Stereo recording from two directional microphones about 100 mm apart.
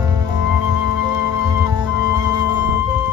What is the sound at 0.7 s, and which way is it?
Music, 45° right (ahead or behind).